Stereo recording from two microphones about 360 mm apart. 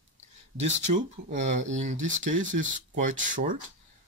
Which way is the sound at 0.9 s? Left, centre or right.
Centre.